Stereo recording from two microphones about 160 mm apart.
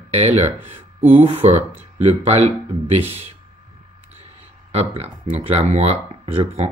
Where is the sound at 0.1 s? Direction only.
45° right (ahead or behind).